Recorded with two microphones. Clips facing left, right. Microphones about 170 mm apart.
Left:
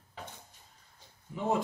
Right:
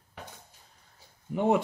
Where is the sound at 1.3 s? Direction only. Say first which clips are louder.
Right 6 dB; 65° right (ahead or behind).